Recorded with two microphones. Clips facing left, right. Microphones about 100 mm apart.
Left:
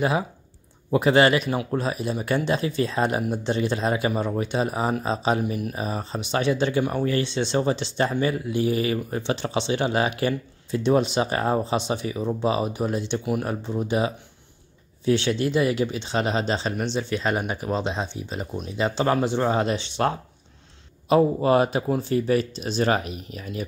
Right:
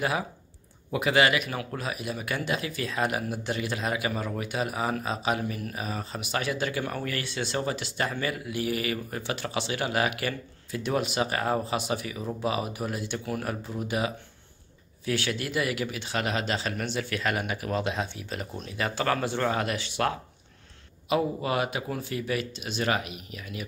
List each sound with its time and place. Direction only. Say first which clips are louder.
0.9 s speech: left 5 dB; 35° left (ahead or behind)
5.4 s speech: left 6 dB; 20° left (ahead or behind)
5.8 s speech: left 5 dB; 30° left (ahead or behind)